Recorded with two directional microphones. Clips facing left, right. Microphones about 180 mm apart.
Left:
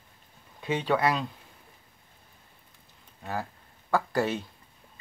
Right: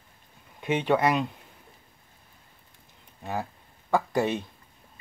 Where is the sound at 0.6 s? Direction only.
20° right (ahead or behind).